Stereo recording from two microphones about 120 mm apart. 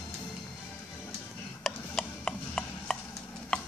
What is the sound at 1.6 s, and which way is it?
Ratchet, centre (ahead or behind).